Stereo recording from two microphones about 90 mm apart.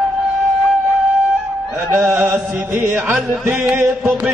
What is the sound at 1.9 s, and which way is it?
Music, 30° right (ahead or behind).